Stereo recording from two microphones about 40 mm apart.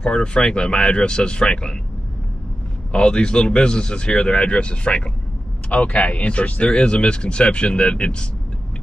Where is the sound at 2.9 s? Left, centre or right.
Left.